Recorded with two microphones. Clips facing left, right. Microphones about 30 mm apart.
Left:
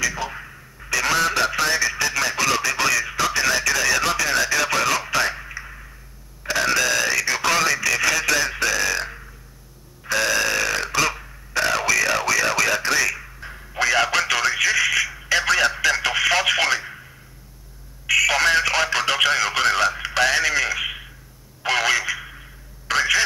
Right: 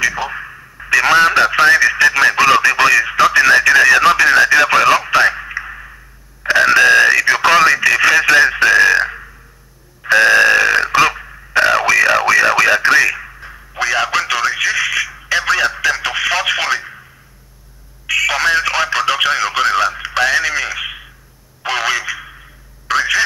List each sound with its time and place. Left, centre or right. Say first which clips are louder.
0.0 s a sound: right 7 dB; right
2.0 s speech: right 11 dB; right
10.0 s burping: right 11 dB; right
13.4 s a man's voice: right 3 dB; centre
18.0 s speech: right 3 dB; centre